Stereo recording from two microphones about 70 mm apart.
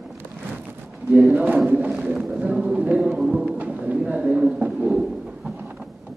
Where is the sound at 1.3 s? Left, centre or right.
Right.